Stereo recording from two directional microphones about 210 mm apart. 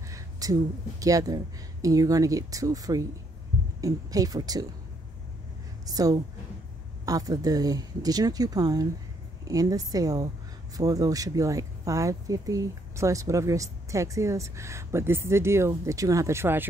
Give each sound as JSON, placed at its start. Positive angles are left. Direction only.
{"t": 0.1, "sound": "a woman's voice", "side_deg": -15}
{"t": 5.9, "sound": "a woman's voice", "side_deg": -15}